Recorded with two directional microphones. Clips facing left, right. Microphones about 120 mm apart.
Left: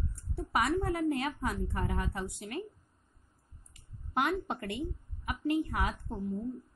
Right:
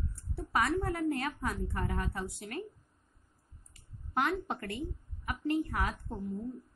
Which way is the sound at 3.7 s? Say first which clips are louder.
Left 1 dB; 15° left (ahead or behind).